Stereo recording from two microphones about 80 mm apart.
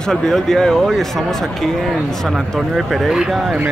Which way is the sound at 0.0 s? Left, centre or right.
Centre.